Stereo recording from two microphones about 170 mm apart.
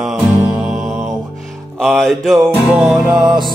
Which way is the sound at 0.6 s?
5° right (ahead or behind).